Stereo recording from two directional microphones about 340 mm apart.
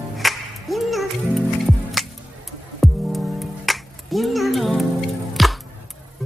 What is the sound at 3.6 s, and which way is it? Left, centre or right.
Music, centre.